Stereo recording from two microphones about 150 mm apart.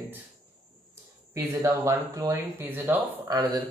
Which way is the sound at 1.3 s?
25° right (ahead or behind).